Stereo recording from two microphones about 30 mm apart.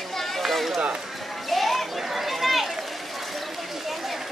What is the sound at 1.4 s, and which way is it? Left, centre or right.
Children playing, centre.